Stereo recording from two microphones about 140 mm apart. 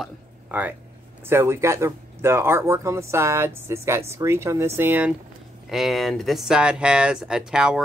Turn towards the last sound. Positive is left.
turn(degrees=-5)  # may be behind; listen again after turning